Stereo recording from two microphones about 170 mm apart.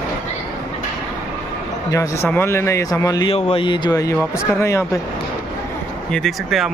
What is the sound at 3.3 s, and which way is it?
Speech, 35° left (ahead or behind).